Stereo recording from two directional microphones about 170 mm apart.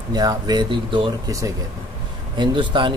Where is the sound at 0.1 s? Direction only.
25° right (ahead or behind).